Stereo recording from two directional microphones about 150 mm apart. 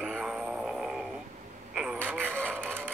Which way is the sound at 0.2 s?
5° right (ahead or behind).